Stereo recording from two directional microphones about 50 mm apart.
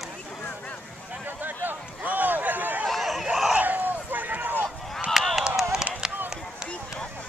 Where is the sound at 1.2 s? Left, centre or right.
Right.